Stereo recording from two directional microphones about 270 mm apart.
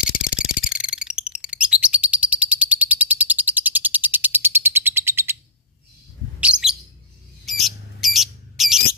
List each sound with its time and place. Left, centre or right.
0.1 s a sound: left
0.7 s bird: centre
6.4 s chirp: centre
7.4 s bird: centre